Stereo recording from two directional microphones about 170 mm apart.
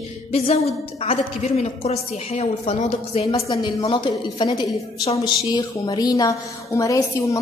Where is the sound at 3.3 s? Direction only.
20° left (ahead or behind).